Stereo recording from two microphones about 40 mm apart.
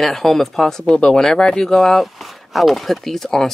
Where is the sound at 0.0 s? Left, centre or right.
Centre.